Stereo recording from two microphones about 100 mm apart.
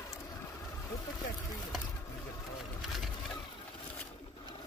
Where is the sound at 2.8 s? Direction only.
Centre (ahead or behind).